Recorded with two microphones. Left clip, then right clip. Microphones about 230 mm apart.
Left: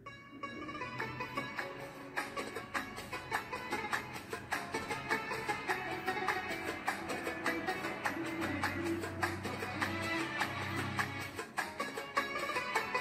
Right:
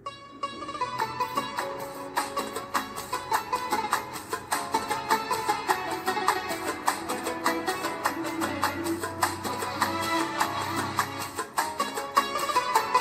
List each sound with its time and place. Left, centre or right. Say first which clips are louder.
0.7 s music: right 13 dB; right